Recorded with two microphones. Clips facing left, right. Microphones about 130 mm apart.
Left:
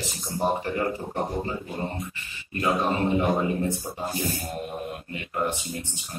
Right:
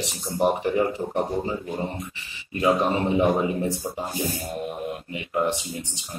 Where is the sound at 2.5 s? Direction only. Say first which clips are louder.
Right 3 dB; 15° right (ahead or behind).